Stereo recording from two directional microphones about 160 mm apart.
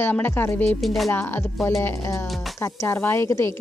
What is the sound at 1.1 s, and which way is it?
Speech, 15° left (ahead or behind).